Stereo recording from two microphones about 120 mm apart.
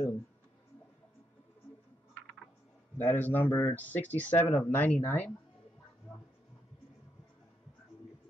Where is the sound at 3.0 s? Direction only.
15° left (ahead or behind).